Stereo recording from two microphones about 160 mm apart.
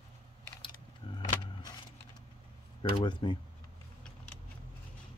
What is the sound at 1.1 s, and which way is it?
Vehicle, 25° left (ahead or behind).